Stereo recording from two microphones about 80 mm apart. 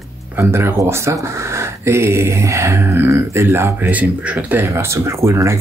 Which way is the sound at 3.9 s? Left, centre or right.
Right.